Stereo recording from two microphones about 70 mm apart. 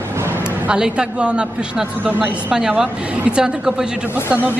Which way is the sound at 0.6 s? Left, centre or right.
Centre.